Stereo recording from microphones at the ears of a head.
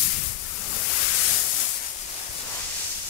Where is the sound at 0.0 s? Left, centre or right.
Left.